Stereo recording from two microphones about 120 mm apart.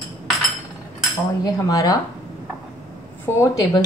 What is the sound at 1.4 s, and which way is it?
Speech, 35° left (ahead or behind).